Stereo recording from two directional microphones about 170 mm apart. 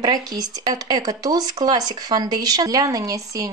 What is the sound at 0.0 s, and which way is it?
Speech, 25° right (ahead or behind).